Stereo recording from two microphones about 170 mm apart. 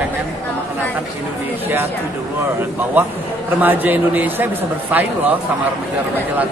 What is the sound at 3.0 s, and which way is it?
A man's voice, 10° right (ahead or behind).